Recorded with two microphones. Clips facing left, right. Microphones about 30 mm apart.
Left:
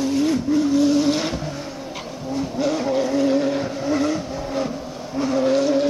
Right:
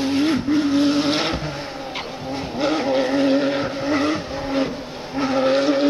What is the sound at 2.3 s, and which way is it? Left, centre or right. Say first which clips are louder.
Vehicle: even; right.